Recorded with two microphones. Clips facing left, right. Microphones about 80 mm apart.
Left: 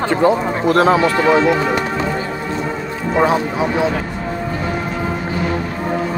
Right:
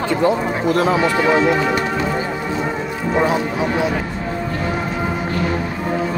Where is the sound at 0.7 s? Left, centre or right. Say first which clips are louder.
Left 5 dB; left.